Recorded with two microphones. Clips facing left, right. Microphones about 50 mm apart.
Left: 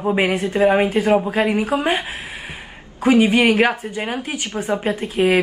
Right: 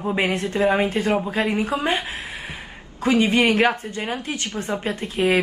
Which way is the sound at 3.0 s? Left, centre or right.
Centre.